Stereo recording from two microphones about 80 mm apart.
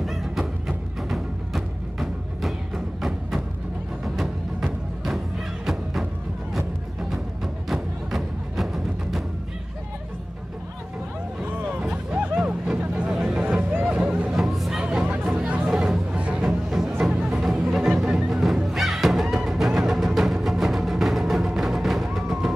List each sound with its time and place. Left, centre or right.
0.0 s music: centre
3.0 s a sound: centre
4.0 s music: centre
6.5 s music: centre
11.9 s music: centre
12.7 s vehicle: centre
13.9 s music: centre
15.2 s chatter: centre
16.2 s music: centre
16.4 s music: centre